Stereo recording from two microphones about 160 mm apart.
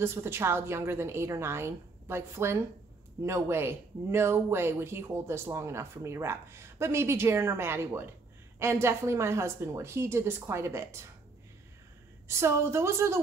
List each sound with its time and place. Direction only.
0.0 s speech: 15° right (ahead or behind)
12.3 s speech: 15° right (ahead or behind)